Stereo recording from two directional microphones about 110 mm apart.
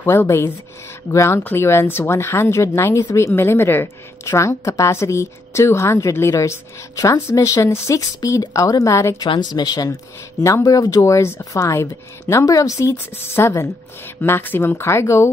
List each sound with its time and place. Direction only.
0.0 s speech: 20° left (ahead or behind)
9.3 s a woman's voice: 40° left (ahead or behind)